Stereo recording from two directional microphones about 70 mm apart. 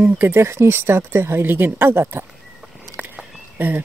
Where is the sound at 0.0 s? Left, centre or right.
Right.